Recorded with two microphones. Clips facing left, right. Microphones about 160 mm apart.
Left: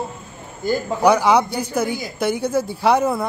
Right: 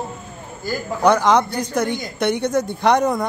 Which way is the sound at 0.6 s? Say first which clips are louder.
Left 5 dB; 20° left (ahead or behind).